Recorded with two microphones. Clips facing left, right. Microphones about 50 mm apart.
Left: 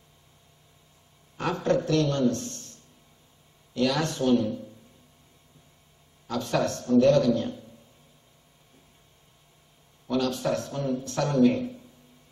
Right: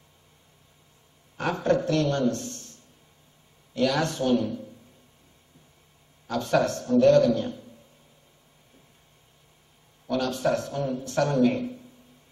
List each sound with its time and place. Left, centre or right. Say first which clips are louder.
1.3 s a man's voice: right 1 dB; right
6.3 s a man's voice: right 3 dB; right
10.1 s a man's voice: right 1 dB; right